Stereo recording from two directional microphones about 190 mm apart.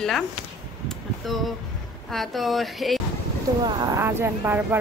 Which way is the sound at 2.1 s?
Centre (ahead or behind).